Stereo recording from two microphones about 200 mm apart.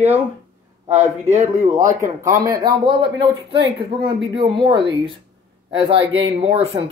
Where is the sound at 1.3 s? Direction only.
35° right (ahead or behind).